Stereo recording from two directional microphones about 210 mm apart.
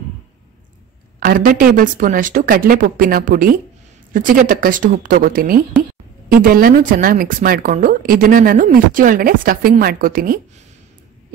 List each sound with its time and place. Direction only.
1.2 s speech: 40° right (ahead or behind)